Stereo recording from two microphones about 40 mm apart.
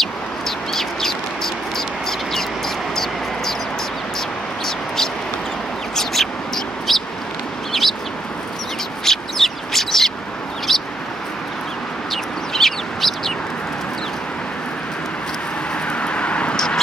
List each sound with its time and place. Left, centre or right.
0.7 s bird: centre
4.6 s a sound: centre
5.9 s bird: centre
9.0 s bird: centre
12.1 s bird: centre
15.9 s vehicle: left
16.5 s duck: centre